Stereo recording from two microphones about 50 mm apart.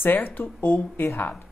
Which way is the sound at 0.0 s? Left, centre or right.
Left.